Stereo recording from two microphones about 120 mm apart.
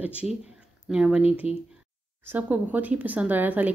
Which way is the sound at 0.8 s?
10° right (ahead or behind).